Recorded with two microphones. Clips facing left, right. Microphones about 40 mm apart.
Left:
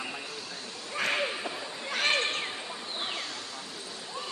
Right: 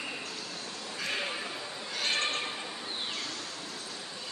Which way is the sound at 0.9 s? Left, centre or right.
Left.